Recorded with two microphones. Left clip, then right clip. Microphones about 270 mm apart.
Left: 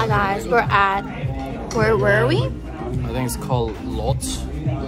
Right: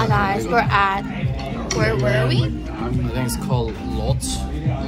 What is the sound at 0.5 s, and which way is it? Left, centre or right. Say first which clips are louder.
Speech: left 2 dB; centre.